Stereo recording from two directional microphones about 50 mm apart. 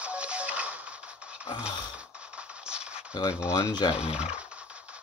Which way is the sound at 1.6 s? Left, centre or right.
Right.